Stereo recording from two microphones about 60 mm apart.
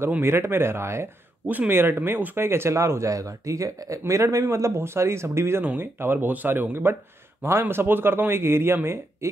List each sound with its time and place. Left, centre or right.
0.2 s speech: right
2.3 s speech: right